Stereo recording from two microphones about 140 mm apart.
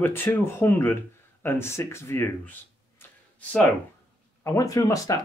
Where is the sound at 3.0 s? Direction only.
10° left (ahead or behind).